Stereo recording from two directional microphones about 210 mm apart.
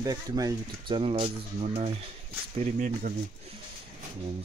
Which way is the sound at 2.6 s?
40° right (ahead or behind).